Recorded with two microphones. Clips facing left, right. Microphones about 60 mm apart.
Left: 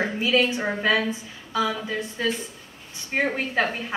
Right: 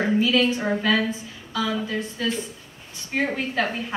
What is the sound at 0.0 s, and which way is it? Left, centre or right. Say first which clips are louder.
A woman's voice: right 2 dB; left.